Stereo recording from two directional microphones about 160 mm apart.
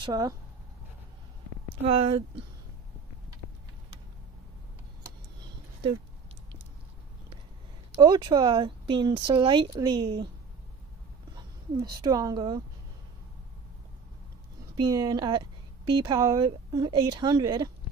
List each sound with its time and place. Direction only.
0.0 s speech: 25° right (ahead or behind)
1.9 s speech: 35° right (ahead or behind)
8.0 s speech: 25° right (ahead or behind)
11.3 s speech: 25° right (ahead or behind)
14.8 s speech: 25° right (ahead or behind)